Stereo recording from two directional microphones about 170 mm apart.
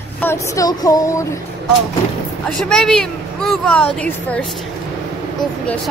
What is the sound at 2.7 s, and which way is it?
Speech, 5° left (ahead or behind).